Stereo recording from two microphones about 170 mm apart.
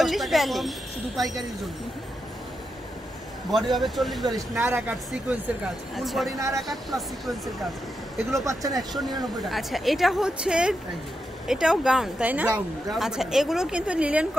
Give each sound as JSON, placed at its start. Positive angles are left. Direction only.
{"t": 0.0, "sound": "speech", "side_deg": 0}
{"t": 3.4, "sound": "speech", "side_deg": 0}
{"t": 4.3, "sound": "speech", "side_deg": -15}
{"t": 5.9, "sound": "speech", "side_deg": 0}
{"t": 6.3, "sound": "speech", "side_deg": -20}
{"t": 6.7, "sound": "speech", "side_deg": 0}
{"t": 8.5, "sound": "speech", "side_deg": -20}
{"t": 9.5, "sound": "speech", "side_deg": 0}